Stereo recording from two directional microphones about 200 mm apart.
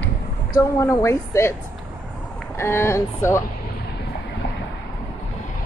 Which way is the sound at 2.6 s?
10° left (ahead or behind).